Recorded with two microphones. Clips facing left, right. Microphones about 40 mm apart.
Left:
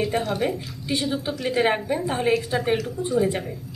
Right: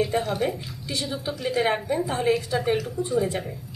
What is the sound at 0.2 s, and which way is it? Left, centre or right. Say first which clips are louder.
Speech: left 1 dB; centre.